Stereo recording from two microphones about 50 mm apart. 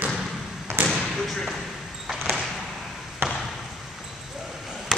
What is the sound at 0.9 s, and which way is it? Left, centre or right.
Basketball bounce, centre.